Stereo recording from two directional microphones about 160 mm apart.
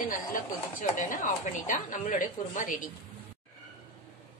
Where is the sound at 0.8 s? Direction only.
55° left (ahead or behind).